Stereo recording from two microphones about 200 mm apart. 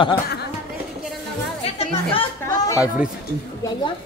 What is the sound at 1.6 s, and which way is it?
Chatter, 30° left (ahead or behind).